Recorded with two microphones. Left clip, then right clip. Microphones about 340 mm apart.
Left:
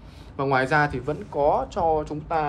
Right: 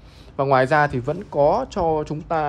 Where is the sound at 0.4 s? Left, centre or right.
Right.